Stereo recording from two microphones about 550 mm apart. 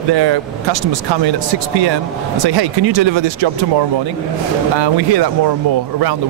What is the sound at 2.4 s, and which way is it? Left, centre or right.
Speech, right.